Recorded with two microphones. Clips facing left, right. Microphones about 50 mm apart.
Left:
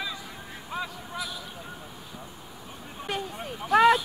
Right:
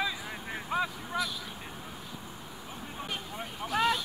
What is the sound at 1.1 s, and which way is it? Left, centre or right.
Vehicle, centre.